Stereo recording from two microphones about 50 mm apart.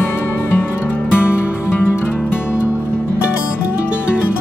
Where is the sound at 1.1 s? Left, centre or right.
Left.